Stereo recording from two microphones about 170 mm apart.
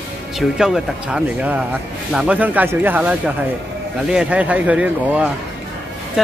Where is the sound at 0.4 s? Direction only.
Centre (ahead or behind).